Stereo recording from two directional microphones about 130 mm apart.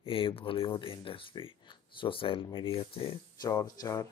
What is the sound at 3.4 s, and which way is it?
Speech, 30° left (ahead or behind).